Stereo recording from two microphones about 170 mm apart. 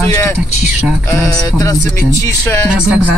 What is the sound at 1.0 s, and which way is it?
Speech, 20° left (ahead or behind).